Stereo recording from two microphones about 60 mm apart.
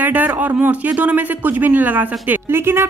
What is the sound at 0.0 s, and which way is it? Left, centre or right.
Speech, right.